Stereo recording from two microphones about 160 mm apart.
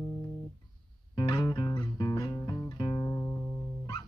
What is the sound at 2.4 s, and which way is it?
Music, 20° left (ahead or behind).